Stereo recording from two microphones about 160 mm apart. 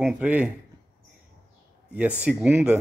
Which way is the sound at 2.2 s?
10° right (ahead or behind).